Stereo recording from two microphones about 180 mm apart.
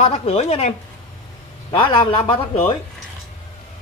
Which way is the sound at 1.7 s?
25° left (ahead or behind).